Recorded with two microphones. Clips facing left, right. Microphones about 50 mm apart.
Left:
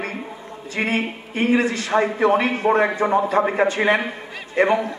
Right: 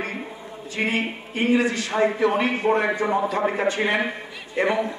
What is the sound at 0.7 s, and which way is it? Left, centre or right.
A man's voice, left.